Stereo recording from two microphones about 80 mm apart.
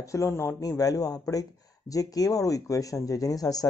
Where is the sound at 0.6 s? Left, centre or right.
Left.